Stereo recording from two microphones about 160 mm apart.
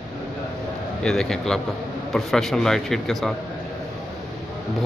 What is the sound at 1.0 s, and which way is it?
A man's voice, 5° left (ahead or behind).